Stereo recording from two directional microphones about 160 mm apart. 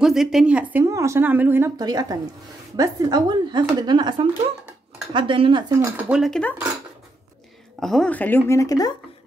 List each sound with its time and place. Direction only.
0.0 s a woman's voice: 5° right (ahead or behind)
1.8 s speech: 25° right (ahead or behind)
5.7 s speech: 10° right (ahead or behind)
7.8 s speech: 5° left (ahead or behind); by 8.9 s 20° left (ahead or behind)